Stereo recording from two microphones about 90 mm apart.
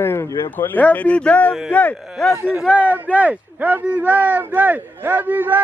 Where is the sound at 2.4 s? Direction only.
10° right (ahead or behind).